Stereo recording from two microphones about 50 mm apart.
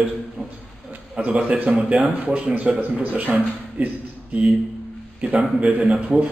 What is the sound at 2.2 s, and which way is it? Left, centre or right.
Speech, right.